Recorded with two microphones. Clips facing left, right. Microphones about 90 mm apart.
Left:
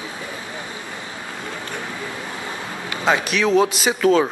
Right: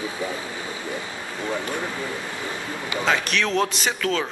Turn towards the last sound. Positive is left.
turn(degrees=20)  # may be behind; listen again after turning